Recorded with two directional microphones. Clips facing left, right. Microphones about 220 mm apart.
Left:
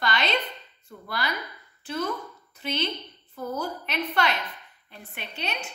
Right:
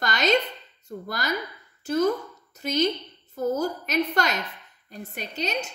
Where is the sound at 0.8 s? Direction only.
45° right (ahead or behind).